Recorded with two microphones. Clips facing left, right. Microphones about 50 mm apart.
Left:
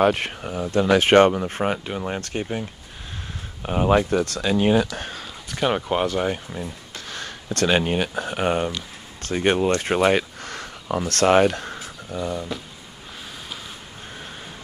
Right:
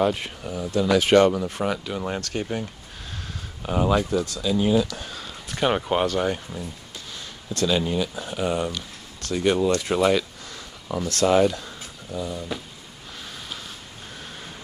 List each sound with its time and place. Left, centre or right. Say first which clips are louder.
0.0 s speech: left 4 dB; left
0.5 s speech: left 2 dB; left
2.4 s speech: left 1 dB; centre
4.1 s speech: left 2 dB; left
5.5 s speech: even; centre
6.0 s speech: even; centre
7.1 s speech: left 5 dB; left